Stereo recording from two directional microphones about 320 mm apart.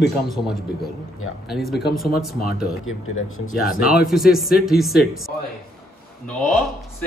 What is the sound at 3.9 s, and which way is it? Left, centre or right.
Speech, centre.